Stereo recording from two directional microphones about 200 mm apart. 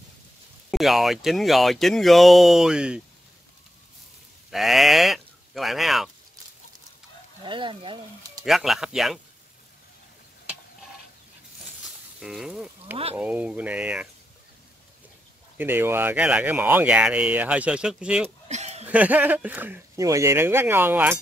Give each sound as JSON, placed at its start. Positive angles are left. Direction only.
{"t": 0.7, "sound": "speech", "side_deg": 0}
{"t": 4.5, "sound": "speech", "side_deg": 0}
{"t": 7.4, "sound": "speech", "side_deg": -25}
{"t": 8.5, "sound": "speech", "side_deg": 0}
{"t": 12.2, "sound": "speech", "side_deg": -5}
{"t": 15.5, "sound": "speech", "side_deg": -10}
{"t": 18.5, "sound": "chuckle", "side_deg": -35}
{"t": 18.9, "sound": "speech", "side_deg": -5}